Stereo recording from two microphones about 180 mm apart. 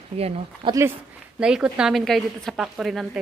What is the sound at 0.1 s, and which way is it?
Speech, 35° right (ahead or behind).